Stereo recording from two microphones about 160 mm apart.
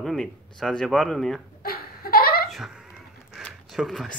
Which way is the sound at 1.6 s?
70° left (ahead or behind).